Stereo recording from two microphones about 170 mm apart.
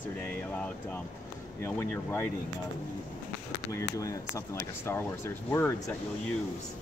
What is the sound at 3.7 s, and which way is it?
Speech, 20° left (ahead or behind).